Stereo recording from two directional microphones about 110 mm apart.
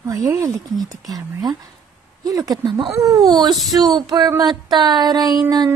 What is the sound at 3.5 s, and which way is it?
Speech, centre (ahead or behind).